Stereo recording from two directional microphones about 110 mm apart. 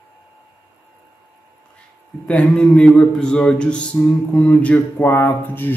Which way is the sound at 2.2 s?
10° left (ahead or behind).